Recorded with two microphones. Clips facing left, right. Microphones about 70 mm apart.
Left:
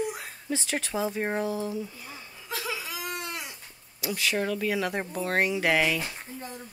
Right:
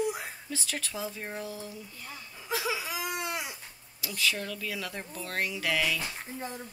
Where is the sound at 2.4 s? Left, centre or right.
Centre.